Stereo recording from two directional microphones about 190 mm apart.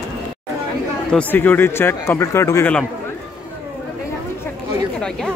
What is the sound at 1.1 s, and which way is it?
Speech, 10° left (ahead or behind).